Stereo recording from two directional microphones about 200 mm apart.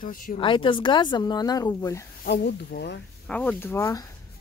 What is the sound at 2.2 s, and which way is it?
Speech, 50° left (ahead or behind).